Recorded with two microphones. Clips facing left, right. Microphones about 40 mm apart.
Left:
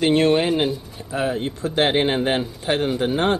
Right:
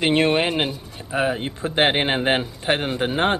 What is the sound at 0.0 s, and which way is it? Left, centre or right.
Speech, right.